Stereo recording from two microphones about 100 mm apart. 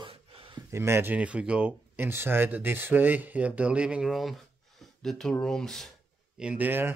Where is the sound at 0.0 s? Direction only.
70° right (ahead or behind).